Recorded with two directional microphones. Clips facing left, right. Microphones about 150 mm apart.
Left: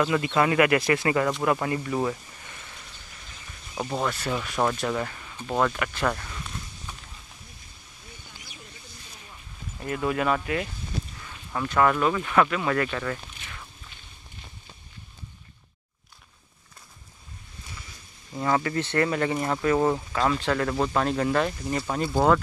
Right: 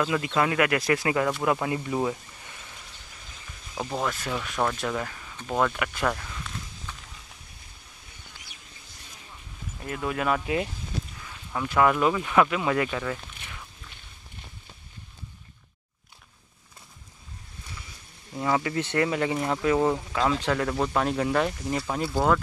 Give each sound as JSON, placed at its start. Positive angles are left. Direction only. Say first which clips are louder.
{"t": 0.0, "sound": "speech", "louder": "left 2 dB", "side_deg": 0}
{"t": 3.7, "sound": "speech", "louder": "left 1 dB", "side_deg": 5}
{"t": 9.8, "sound": "speech", "louder": "left 3 dB", "side_deg": 0}
{"t": 10.4, "sound": "speech", "louder": "right 1 dB", "side_deg": -20}
{"t": 11.5, "sound": "speech", "louder": "even", "side_deg": -10}
{"t": 18.3, "sound": "speech", "louder": "left 1 dB", "side_deg": -5}
{"t": 19.8, "sound": "speech", "louder": "even", "side_deg": 5}
{"t": 22.1, "sound": "speech", "louder": "left 3 dB", "side_deg": 5}